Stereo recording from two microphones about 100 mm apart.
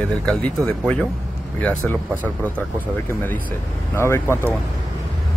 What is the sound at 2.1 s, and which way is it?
Speech, 20° right (ahead or behind).